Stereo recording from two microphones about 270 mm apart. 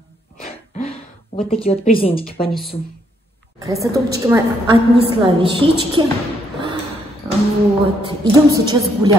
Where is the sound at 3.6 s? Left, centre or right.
Centre.